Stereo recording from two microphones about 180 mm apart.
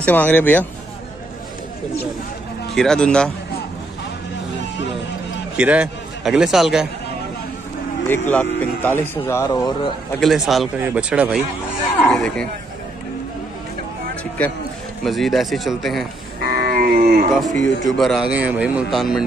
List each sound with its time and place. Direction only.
0.0 s speech: 10° left (ahead or behind)
2.7 s a man's voice: 5° left (ahead or behind)
5.6 s a man's voice: 5° right (ahead or behind)
8.1 s speech: 10° left (ahead or behind)
10.2 s a man's voice: centre (ahead or behind)
12.0 s a man's voice: 5° left (ahead or behind)
15.0 s a man's voice: centre (ahead or behind)
16.4 s a sound: 55° right (ahead or behind)
17.8 s a man's voice: centre (ahead or behind)